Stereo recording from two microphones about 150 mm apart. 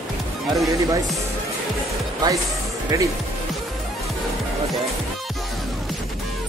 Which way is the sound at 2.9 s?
20° right (ahead or behind).